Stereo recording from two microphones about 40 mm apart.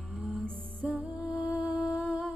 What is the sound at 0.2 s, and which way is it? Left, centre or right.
Music, right.